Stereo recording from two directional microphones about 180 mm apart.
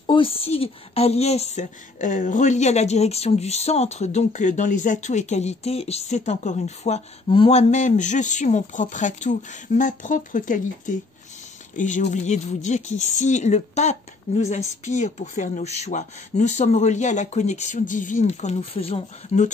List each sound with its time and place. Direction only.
0.0 s a woman's voice: 30° left (ahead or behind)